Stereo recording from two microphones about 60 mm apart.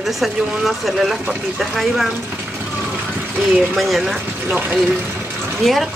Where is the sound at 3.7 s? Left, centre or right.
Centre.